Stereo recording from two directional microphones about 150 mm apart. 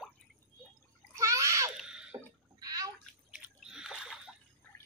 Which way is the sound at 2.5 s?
25° right (ahead or behind).